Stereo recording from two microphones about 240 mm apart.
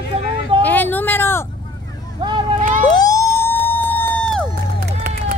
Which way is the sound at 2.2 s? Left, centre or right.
Centre.